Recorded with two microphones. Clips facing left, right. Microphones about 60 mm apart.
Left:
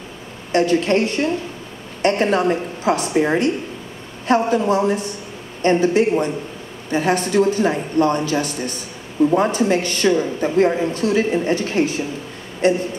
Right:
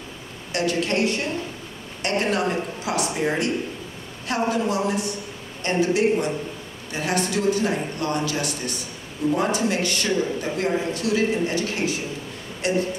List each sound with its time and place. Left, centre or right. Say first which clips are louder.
0.5 s a man's voice: left 7 dB; left